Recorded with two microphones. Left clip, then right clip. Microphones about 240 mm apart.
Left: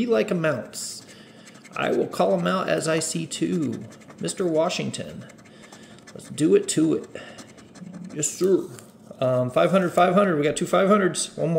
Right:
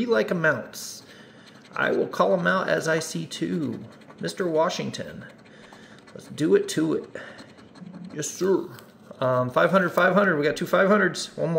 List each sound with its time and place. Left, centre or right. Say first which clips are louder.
0.0 s speech: even; centre
1.7 s speech: even; centre
6.1 s speech: left 2 dB; centre
9.2 s speech: left 1 dB; centre